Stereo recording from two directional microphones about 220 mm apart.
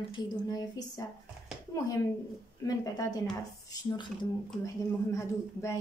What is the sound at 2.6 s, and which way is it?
A woman's voice, 15° left (ahead or behind).